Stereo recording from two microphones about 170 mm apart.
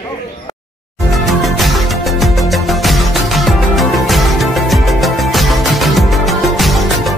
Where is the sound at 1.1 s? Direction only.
Centre (ahead or behind).